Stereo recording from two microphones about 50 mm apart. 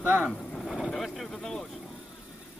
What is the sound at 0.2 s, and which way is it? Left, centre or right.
Vehicle, centre.